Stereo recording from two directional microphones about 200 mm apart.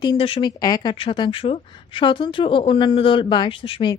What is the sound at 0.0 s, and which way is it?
Speech, 25° left (ahead or behind).